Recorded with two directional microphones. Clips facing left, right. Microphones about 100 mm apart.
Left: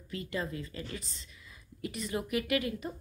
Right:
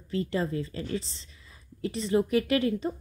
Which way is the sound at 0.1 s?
30° right (ahead or behind).